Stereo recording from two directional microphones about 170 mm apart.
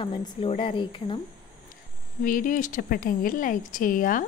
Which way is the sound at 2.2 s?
55° left (ahead or behind).